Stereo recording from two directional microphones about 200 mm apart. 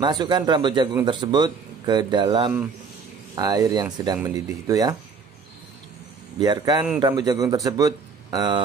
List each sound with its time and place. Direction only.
0.0 s a man's voice: 20° right (ahead or behind)
6.4 s a man's voice: 20° right (ahead or behind)